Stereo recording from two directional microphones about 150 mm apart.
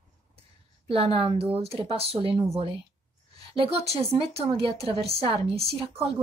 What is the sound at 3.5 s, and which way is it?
Speech, 40° right (ahead or behind).